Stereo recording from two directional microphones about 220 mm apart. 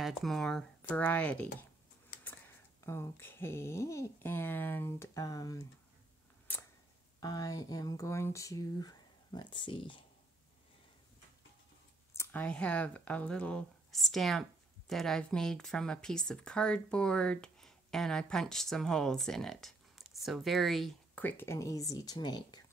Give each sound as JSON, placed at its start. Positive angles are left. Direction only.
{"t": 0.0, "sound": "speech", "side_deg": 0}
{"t": 2.8, "sound": "speech", "side_deg": 10}
{"t": 7.2, "sound": "speech", "side_deg": 15}
{"t": 12.1, "sound": "speech", "side_deg": 10}